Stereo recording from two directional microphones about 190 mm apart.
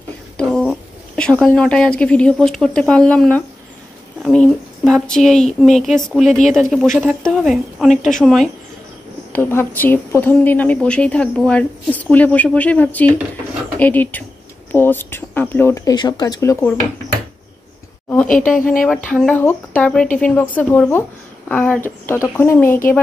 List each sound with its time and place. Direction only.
0.4 s a sound: 5° left (ahead or behind)
1.4 s speech: 5° left (ahead or behind)
9.3 s a woman's voice: 10° left (ahead or behind)
18.1 s speech: 5° left (ahead or behind)
18.6 s speech: 45° left (ahead or behind)
19.0 s speech: 5° left (ahead or behind)